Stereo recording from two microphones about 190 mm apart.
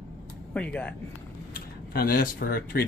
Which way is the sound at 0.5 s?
10° left (ahead or behind).